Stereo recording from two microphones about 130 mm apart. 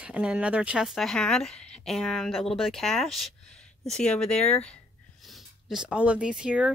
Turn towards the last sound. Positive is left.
turn(degrees=-5)  # may be behind; listen again after turning